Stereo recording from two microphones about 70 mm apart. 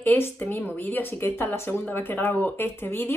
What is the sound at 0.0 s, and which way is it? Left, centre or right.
Speech, left.